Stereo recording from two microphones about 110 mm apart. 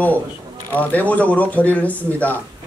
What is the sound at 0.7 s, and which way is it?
A man's voice, 15° left (ahead or behind).